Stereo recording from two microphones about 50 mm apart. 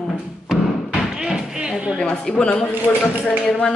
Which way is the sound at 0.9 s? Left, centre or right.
Centre.